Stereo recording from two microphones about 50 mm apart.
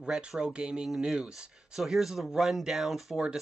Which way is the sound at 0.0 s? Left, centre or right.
Centre.